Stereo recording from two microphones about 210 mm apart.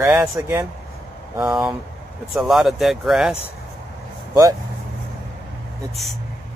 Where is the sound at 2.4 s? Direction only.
Centre (ahead or behind).